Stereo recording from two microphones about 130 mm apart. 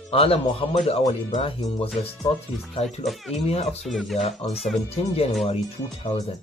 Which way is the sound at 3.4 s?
55° left (ahead or behind).